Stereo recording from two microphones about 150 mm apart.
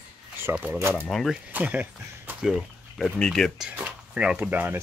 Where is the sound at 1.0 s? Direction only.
5° left (ahead or behind).